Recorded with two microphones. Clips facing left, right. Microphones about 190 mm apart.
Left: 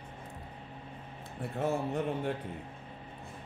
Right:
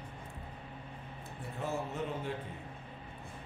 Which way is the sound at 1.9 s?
55° left (ahead or behind).